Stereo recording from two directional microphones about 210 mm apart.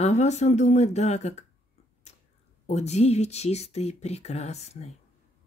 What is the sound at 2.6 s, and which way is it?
Speech, 30° left (ahead or behind).